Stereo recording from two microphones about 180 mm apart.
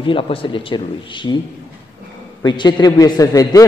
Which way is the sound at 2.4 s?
25° left (ahead or behind).